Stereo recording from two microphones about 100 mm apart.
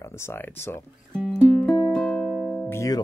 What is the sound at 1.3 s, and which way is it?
Music, 15° left (ahead or behind).